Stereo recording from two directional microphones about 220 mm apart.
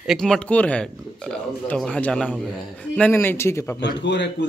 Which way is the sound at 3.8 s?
55° left (ahead or behind).